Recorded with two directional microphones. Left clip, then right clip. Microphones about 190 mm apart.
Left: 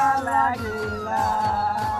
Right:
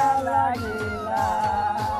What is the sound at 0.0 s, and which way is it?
Music, 15° right (ahead or behind).